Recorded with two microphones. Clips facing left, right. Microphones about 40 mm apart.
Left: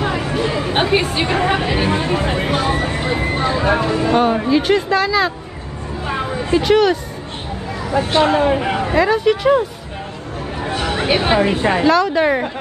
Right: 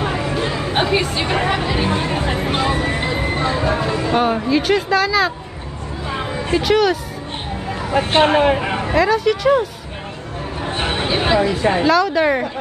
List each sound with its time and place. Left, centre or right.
0.0 s chatter: left
0.5 s speech: left
3.6 s speech: left
4.2 s speech: centre
6.6 s speech: centre
7.9 s speech: right
8.9 s speech: centre
10.7 s a sound: right
11.2 s speech: left
11.8 s speech: centre